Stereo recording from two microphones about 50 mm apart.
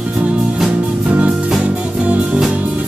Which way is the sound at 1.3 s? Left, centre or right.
Centre.